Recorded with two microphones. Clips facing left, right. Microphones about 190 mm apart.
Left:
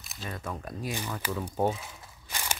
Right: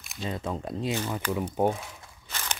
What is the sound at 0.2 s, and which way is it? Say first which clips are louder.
Speech: right 5 dB; 25° right (ahead or behind).